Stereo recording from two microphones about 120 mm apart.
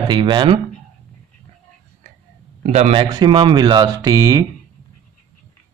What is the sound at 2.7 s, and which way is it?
Speech, 65° right (ahead or behind).